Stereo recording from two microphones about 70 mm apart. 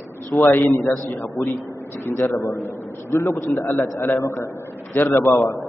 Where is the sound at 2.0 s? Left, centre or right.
Left.